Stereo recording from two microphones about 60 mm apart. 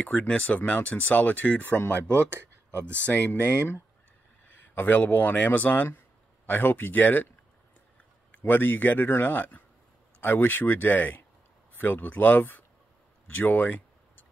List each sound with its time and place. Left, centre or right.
0.0 s speech: left
1.6 s a man's voice: left
2.0 s speech: right
3.1 s a man's voice: left
8.3 s a man's voice: left